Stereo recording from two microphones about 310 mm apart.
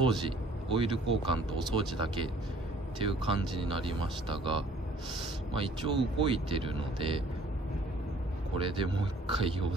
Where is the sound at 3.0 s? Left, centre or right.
Centre.